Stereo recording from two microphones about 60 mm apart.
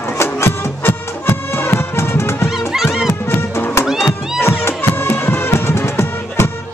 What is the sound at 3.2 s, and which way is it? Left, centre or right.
Music, left.